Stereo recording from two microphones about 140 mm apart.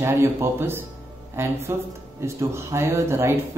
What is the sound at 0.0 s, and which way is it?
Speech, 15° right (ahead or behind).